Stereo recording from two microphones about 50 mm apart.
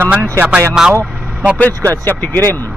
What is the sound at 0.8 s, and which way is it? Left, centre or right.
Speech, centre.